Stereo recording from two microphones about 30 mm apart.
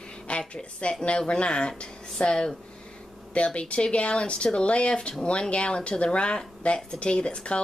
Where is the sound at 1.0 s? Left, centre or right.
Left.